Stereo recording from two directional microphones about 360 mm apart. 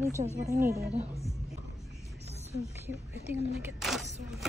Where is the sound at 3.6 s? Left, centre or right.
Centre.